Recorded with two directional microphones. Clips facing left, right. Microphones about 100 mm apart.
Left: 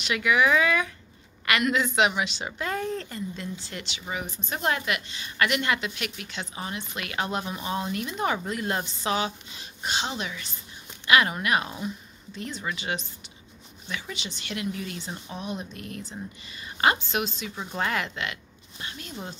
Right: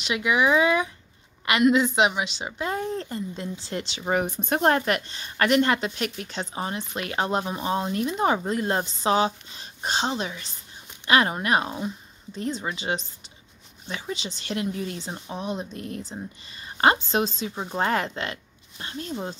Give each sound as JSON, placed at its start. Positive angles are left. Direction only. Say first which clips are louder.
{"t": 0.0, "sound": "a woman's voice", "louder": "right 1 dB", "side_deg": -20}
{"t": 4.0, "sound": "a woman's voice", "louder": "right 10 dB", "side_deg": -50}